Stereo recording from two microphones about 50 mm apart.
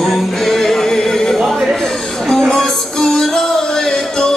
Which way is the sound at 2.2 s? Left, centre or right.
Centre.